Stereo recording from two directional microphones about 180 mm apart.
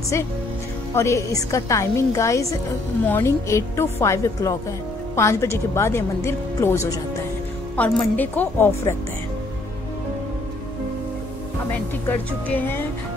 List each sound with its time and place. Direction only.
0.9 s a woman's voice: 15° left (ahead or behind)
11.7 s a woman's voice: 10° left (ahead or behind)